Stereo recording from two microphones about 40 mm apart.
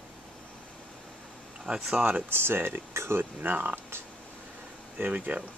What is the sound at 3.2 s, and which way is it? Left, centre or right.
Speech, right.